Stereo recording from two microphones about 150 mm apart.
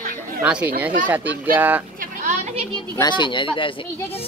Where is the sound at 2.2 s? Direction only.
50° right (ahead or behind).